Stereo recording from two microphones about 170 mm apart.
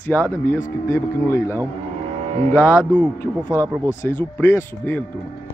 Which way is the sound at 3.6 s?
20° right (ahead or behind).